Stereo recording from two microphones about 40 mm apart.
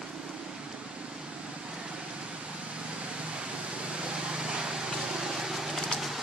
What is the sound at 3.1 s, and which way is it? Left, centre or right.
Vehicle, right.